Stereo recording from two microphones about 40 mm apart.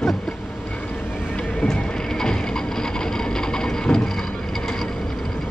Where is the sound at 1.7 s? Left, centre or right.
Centre.